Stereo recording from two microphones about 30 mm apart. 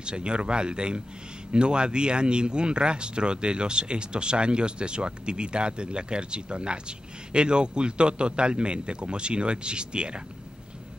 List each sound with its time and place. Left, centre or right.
0.0 s speech: right